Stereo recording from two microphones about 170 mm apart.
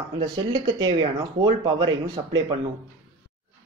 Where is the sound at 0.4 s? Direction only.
30° right (ahead or behind).